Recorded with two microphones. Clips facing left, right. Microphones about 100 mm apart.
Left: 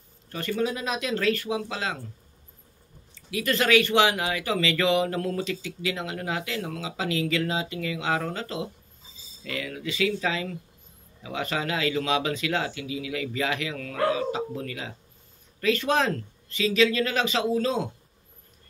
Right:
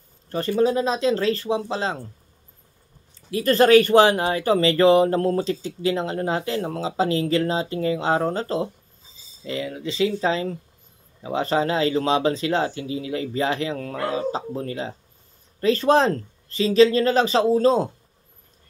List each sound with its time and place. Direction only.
0.3 s speech: 35° right (ahead or behind)
3.3 s speech: 35° right (ahead or behind)
9.4 s speech: 25° right (ahead or behind)